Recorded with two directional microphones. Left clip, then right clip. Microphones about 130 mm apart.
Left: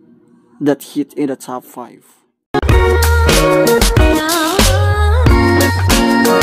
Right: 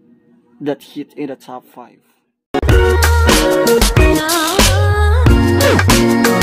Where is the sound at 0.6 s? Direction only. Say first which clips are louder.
Left 6 dB; 30° left (ahead or behind).